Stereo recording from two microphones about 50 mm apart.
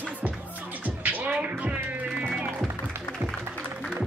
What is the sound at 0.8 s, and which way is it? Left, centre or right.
Music, right.